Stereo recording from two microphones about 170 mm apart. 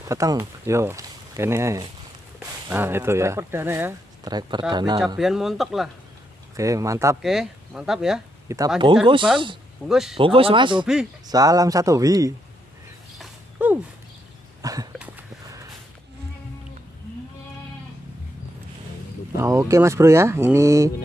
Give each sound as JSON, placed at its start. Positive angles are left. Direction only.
{"t": 0.0, "sound": "speech", "side_deg": -20}
{"t": 4.3, "sound": "a man's voice", "side_deg": -25}
{"t": 5.0, "sound": "speech", "side_deg": 0}
{"t": 6.5, "sound": "a man's voice", "side_deg": -20}
{"t": 7.2, "sound": "speech", "side_deg": 0}
{"t": 8.5, "sound": "a man's voice", "side_deg": -20}
{"t": 9.8, "sound": "speech", "side_deg": 0}
{"t": 10.1, "sound": "a man's voice", "side_deg": -30}
{"t": 13.2, "sound": "a sound", "side_deg": -10}
{"t": 14.6, "sound": "a sound", "side_deg": -20}
{"t": 19.3, "sound": "speech", "side_deg": -20}